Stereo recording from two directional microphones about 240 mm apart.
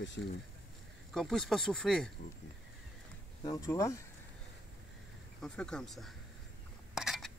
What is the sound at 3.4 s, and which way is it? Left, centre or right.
Speech, centre.